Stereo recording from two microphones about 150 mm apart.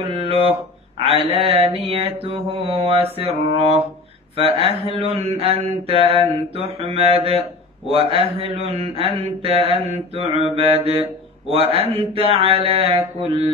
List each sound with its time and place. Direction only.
0.2 s mantra: 40° right (ahead or behind)